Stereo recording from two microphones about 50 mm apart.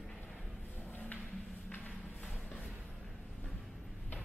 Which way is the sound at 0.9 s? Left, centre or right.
Left.